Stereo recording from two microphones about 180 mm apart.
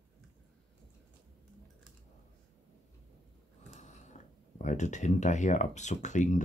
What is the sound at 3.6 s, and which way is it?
Speech, 40° left (ahead or behind).